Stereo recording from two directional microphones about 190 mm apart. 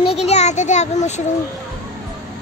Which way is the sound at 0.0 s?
30° left (ahead or behind).